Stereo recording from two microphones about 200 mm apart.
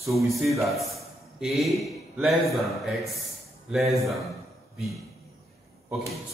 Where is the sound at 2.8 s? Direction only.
Centre (ahead or behind).